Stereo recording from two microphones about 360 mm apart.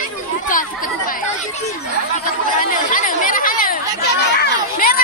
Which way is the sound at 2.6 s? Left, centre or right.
Left.